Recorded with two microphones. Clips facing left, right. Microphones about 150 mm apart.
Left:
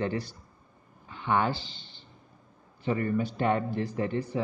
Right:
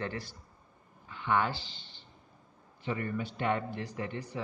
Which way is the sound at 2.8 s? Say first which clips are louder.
Left 7 dB; 40° left (ahead or behind).